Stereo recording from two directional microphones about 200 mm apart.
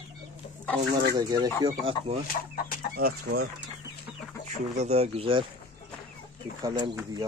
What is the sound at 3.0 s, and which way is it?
Speech, 50° right (ahead or behind).